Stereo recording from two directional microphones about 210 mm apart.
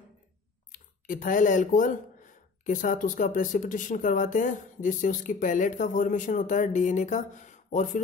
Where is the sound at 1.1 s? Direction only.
40° left (ahead or behind).